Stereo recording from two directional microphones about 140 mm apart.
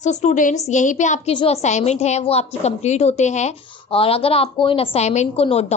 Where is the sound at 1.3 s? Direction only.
45° left (ahead or behind).